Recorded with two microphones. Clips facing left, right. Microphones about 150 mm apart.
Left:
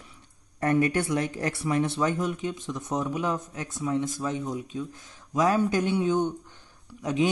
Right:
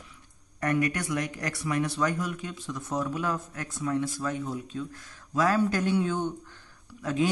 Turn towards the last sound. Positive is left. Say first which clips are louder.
# left 2 dB
turn(degrees=20)  # may be behind; listen again after turning